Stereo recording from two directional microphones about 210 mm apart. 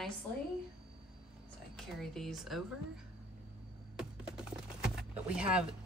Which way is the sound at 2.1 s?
Centre (ahead or behind).